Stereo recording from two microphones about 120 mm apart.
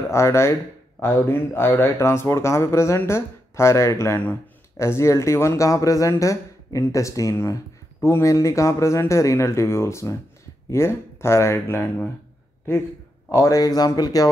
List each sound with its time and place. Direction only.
0.1 s speech: 25° left (ahead or behind)
13.3 s speech: 30° left (ahead or behind)